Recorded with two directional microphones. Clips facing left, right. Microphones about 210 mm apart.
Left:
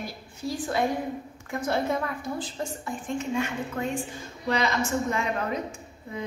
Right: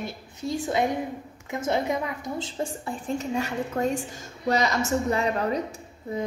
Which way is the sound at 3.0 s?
40° right (ahead or behind).